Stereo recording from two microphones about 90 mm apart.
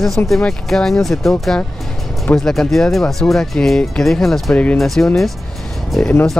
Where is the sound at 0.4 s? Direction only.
5° left (ahead or behind).